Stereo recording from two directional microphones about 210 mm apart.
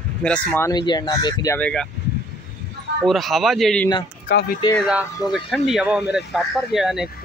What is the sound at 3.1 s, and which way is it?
Speech, centre (ahead or behind).